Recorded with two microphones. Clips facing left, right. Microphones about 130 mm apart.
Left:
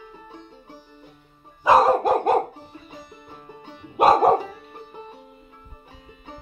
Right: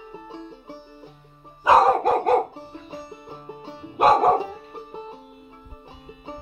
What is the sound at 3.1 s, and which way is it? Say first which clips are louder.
Music: right 5 dB; 30° right (ahead or behind).